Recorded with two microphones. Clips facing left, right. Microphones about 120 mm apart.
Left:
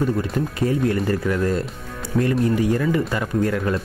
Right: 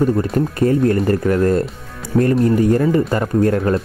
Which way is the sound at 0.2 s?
45° right (ahead or behind).